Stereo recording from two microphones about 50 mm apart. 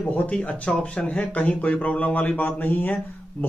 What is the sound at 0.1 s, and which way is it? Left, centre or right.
Speech, left.